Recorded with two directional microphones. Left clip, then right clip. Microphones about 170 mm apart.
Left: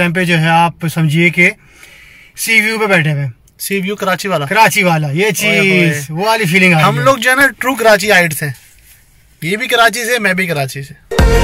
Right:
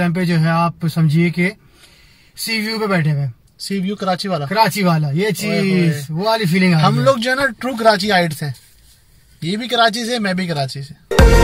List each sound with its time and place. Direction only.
0.0 s speech: 10° left (ahead or behind)
3.6 s speech: 15° right (ahead or behind)
4.5 s speech: 10° left (ahead or behind)
6.8 s speech: 15° right (ahead or behind)
11.1 s music: centre (ahead or behind)